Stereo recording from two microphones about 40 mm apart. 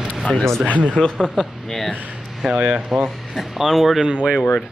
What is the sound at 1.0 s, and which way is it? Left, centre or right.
Speech, centre.